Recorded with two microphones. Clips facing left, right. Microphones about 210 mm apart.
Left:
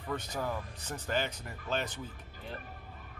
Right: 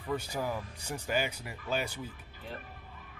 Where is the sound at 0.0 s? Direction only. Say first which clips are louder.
Right 2 dB; 10° right (ahead or behind).